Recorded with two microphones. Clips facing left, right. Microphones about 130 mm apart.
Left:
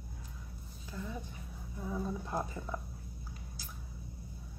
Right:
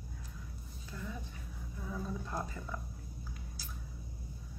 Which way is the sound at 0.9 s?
15° left (ahead or behind).